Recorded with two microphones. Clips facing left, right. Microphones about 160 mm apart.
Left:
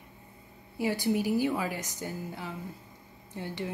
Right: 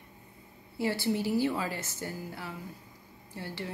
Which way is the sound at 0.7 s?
15° left (ahead or behind).